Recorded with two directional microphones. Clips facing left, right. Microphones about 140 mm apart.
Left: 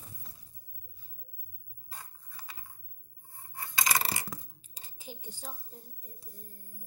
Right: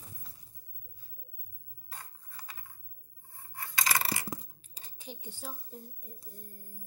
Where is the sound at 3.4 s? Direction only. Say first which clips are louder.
Left 1 dB; 20° left (ahead or behind).